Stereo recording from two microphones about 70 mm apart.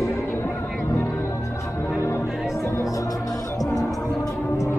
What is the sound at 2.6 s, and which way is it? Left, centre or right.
Music, left.